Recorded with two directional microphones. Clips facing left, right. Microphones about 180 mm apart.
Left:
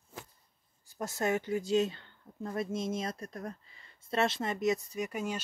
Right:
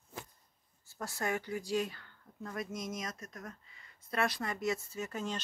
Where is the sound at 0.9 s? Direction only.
20° left (ahead or behind).